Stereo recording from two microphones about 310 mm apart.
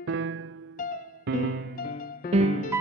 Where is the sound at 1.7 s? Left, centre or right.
Left.